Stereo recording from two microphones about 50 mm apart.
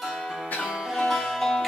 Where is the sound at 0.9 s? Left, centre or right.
Centre.